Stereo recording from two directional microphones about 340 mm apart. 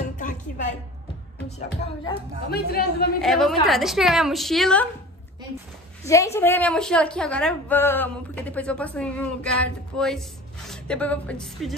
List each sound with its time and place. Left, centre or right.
2.5 s speech: left
3.2 s a woman's voice: centre
6.0 s a woman's voice: centre